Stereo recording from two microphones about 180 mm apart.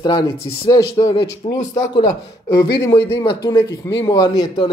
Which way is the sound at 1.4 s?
30° left (ahead or behind).